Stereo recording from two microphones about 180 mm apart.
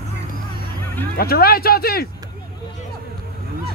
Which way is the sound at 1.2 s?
60° left (ahead or behind).